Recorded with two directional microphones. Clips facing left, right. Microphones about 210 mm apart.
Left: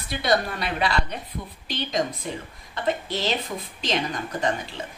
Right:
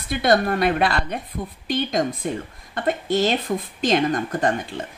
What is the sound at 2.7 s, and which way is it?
Speech, 50° right (ahead or behind).